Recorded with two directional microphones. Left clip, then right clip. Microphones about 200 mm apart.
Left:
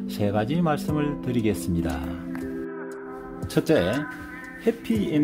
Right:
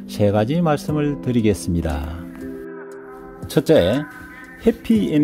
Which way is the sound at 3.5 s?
35° right (ahead or behind).